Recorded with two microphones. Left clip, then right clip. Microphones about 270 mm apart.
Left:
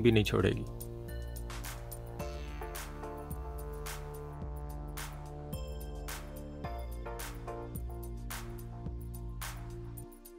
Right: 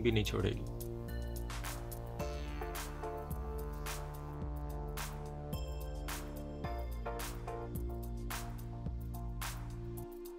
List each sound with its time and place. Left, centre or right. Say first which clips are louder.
0.0 s speech: left 6 dB; left
2.1 s music: even; centre
6.6 s music: even; centre